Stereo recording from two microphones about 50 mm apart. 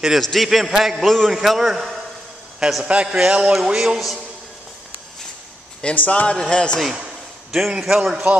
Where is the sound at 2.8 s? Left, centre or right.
Right.